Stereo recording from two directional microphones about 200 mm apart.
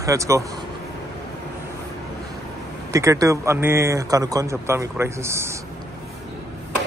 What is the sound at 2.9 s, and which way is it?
Speech, 15° right (ahead or behind).